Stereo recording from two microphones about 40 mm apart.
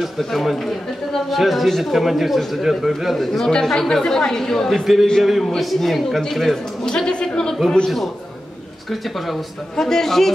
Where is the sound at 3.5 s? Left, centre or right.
Centre.